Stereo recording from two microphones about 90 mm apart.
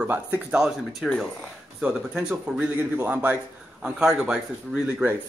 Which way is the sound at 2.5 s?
10° right (ahead or behind).